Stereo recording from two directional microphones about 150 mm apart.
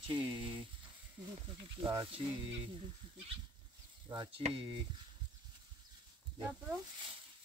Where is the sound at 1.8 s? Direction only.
35° right (ahead or behind).